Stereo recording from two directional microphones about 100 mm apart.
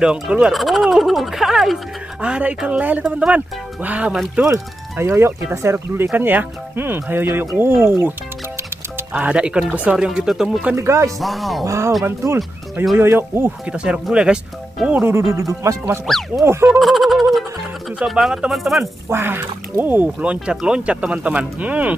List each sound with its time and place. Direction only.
0.0 s speech: 10° right (ahead or behind)
4.5 s speech: 25° right (ahead or behind); by 10.8 s 10° right (ahead or behind)
10.8 s speech: 30° right (ahead or behind)
11.1 s speech: centre (ahead or behind)
11.6 s speech: 30° right (ahead or behind)
13.7 s speech: 10° right (ahead or behind); by 15.8 s 30° right (ahead or behind)
16.1 s speech: centre (ahead or behind)
16.8 s fowl: centre (ahead or behind)
17.9 s speech: 5° right (ahead or behind)
19.0 s speech: 25° right (ahead or behind)